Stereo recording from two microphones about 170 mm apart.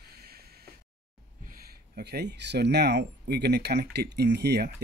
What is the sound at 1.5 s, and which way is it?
Speech, 60° right (ahead or behind).